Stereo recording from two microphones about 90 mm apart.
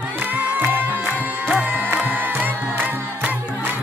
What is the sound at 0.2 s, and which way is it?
Music, 20° right (ahead or behind).